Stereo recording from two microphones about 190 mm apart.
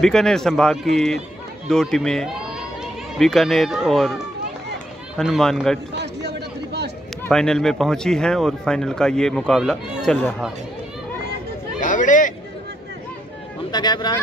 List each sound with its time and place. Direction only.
0.0 s speech: 5° left (ahead or behind)
5.1 s speech: centre (ahead or behind)
5.9 s chatter: 60° right (ahead or behind)
7.2 s speech: 5° left (ahead or behind)
11.8 s a sound: 40° left (ahead or behind)
13.7 s speech: 20° left (ahead or behind)